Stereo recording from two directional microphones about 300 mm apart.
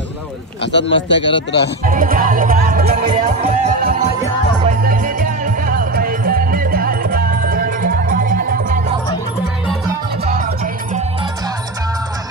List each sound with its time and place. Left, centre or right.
0.7 s a man's voice: left
1.9 s music: right